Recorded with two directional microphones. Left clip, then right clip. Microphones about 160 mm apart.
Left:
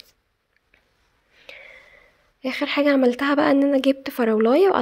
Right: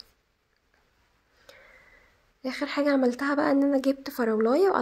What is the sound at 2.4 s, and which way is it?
A woman's voice, 20° left (ahead or behind).